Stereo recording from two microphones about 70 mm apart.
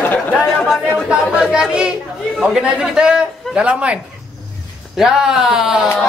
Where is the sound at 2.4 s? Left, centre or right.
Centre.